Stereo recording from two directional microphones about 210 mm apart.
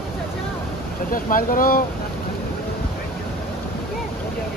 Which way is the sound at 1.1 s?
40° left (ahead or behind).